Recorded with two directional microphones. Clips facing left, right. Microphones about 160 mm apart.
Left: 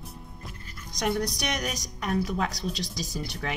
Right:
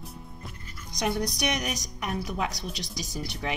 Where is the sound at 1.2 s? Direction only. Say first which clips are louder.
Right 1 dB; 15° right (ahead or behind).